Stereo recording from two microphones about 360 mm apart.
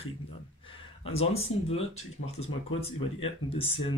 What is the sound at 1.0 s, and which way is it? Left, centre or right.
Speech, centre.